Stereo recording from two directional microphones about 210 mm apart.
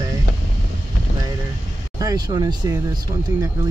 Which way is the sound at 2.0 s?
20° right (ahead or behind).